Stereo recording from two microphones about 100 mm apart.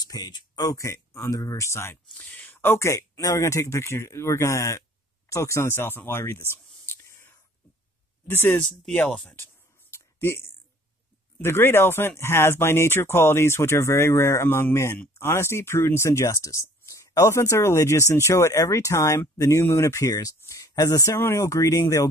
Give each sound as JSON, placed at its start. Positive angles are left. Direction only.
{"t": 0.1, "sound": "speech", "side_deg": 40}
{"t": 8.3, "sound": "speech", "side_deg": 20}
{"t": 9.9, "sound": "a sound", "side_deg": 25}
{"t": 11.4, "sound": "speech", "side_deg": 25}